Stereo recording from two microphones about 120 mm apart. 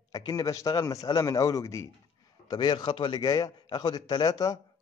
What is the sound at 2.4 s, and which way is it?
Speech, 35° left (ahead or behind).